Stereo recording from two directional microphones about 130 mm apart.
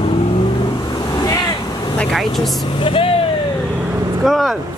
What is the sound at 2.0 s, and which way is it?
Speech, 5° left (ahead or behind).